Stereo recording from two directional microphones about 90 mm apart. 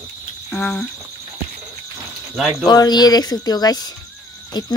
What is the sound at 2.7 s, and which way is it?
Speech, 50° left (ahead or behind).